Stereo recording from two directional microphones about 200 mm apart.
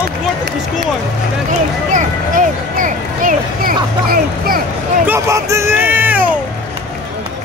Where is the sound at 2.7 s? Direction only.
40° right (ahead or behind).